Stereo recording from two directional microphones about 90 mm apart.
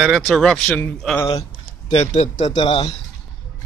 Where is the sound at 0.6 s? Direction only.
15° left (ahead or behind).